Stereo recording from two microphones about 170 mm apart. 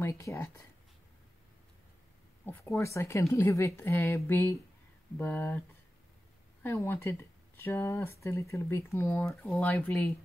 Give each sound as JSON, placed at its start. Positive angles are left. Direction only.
{"t": 0.0, "sound": "speech", "side_deg": 15}
{"t": 2.4, "sound": "speech", "side_deg": 15}
{"t": 6.6, "sound": "speech", "side_deg": 15}